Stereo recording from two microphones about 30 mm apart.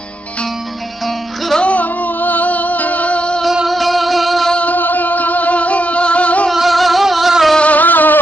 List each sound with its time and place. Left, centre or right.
1.6 s music: left
3.6 s music: centre
4.7 s music: left
6.5 s music: centre
7.6 s music: left